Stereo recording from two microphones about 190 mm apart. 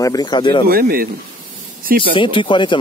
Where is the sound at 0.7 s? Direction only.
50° right (ahead or behind).